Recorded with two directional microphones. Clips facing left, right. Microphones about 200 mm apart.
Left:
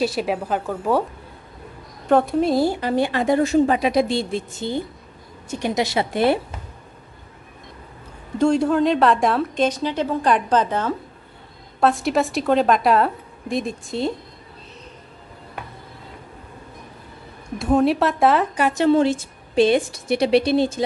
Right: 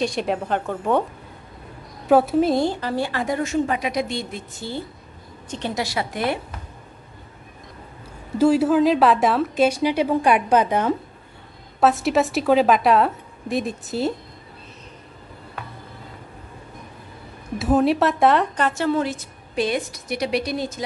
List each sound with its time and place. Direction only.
0.0 s a woman's voice: 5° left (ahead or behind)
2.0 s speech: 5° right (ahead or behind); by 6.4 s 30° left (ahead or behind)
8.4 s a woman's voice: 5° right (ahead or behind)
11.8 s a woman's voice: centre (ahead or behind)
17.6 s speech: centre (ahead or behind); by 20.8 s 30° left (ahead or behind)